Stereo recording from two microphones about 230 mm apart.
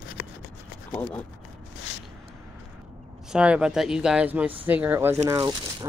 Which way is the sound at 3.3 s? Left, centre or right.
Centre.